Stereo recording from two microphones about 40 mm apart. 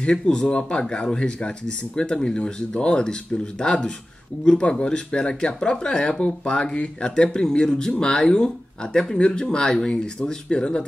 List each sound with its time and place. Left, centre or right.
0.2 s speech: left
10.5 s speech: left